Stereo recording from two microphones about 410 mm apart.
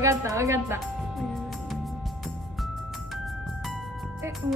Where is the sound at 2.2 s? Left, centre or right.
Centre.